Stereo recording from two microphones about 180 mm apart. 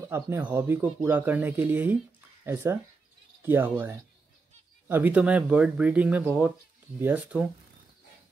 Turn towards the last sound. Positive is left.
turn(degrees=-5)  # may be behind; listen again after turning